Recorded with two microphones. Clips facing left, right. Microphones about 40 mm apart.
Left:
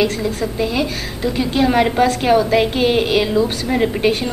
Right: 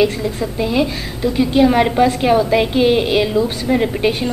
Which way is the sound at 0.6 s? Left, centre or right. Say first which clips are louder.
Right 5 dB; centre.